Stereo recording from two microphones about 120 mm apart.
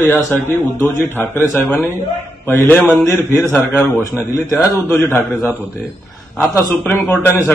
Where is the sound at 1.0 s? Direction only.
20° left (ahead or behind).